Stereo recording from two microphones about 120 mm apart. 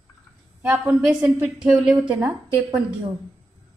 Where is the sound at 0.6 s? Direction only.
15° right (ahead or behind).